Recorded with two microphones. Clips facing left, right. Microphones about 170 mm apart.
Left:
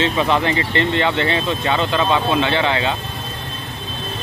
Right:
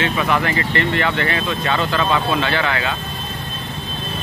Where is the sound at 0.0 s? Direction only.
25° left (ahead or behind).